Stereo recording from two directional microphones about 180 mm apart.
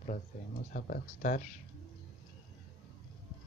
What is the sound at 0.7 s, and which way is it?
Speech, 50° left (ahead or behind).